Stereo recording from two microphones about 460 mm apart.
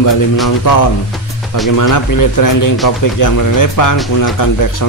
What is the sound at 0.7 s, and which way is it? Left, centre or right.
Speech, left.